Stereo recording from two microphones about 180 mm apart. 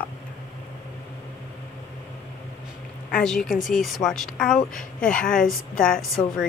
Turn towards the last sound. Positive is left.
turn(degrees=5)  # may be behind; listen again after turning